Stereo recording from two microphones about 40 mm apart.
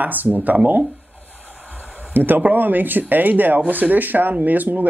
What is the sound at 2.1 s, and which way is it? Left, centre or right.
Speech, right.